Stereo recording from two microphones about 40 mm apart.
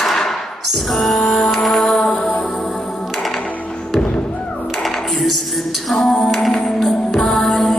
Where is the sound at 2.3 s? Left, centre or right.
Left.